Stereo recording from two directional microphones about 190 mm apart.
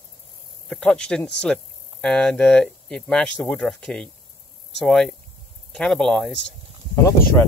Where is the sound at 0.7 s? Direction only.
5° left (ahead or behind).